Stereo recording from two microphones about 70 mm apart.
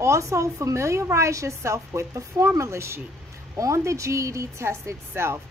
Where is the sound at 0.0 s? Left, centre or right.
Right.